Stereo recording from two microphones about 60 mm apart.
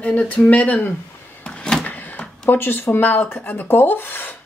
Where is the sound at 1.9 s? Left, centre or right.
Left.